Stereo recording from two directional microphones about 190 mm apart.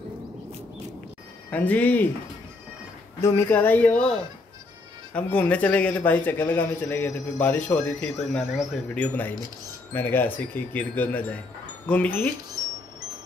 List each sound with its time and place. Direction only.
1.5 s speech: 10° left (ahead or behind)
3.2 s speech: 10° left (ahead or behind)
5.1 s speech: 10° left (ahead or behind)